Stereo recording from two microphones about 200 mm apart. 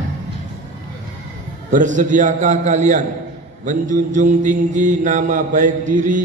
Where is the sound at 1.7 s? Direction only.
40° right (ahead or behind).